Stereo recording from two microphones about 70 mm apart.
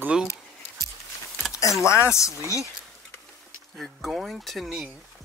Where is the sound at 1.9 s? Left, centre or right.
Left.